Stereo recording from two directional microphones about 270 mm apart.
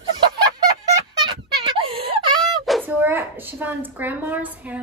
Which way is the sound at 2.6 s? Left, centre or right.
Centre.